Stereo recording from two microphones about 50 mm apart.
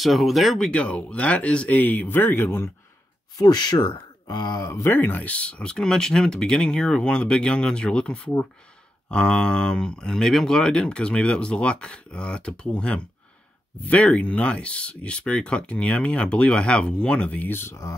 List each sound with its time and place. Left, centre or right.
0.0 s speech: centre
0.7 s speech: left
1.7 s speech: left
4.6 s speech: left
4.8 s speech: left
17.5 s speech: left